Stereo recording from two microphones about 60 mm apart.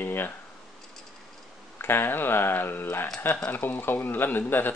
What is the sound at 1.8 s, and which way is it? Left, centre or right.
Speech, left.